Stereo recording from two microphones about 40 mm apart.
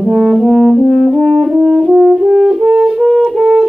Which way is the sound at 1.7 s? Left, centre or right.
Centre.